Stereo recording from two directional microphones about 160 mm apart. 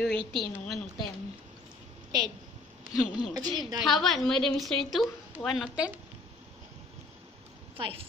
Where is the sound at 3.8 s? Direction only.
Centre (ahead or behind).